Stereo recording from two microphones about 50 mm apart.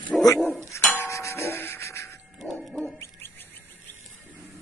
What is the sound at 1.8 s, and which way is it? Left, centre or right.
Music, left.